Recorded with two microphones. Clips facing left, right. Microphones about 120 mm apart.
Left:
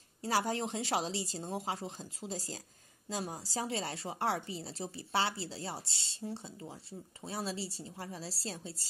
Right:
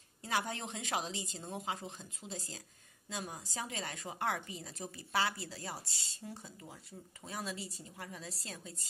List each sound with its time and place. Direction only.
0.2 s a woman's voice: 35° left (ahead or behind)